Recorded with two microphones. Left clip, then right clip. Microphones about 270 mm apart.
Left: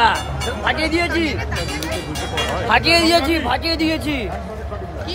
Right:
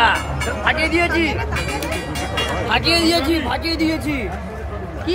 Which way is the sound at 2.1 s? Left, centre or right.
Left.